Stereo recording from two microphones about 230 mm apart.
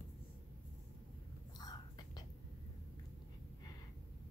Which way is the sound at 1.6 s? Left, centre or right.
Centre.